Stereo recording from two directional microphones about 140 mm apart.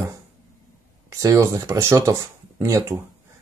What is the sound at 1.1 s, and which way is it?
Speech, 20° right (ahead or behind).